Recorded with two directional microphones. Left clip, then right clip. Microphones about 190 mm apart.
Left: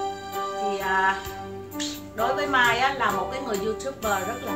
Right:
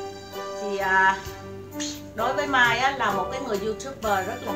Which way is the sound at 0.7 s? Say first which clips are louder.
Right 4 dB; 15° right (ahead or behind).